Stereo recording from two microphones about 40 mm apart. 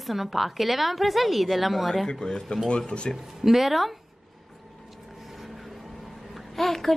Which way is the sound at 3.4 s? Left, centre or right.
Centre.